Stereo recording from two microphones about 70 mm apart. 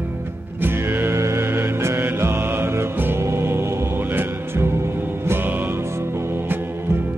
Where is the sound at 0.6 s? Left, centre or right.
Right.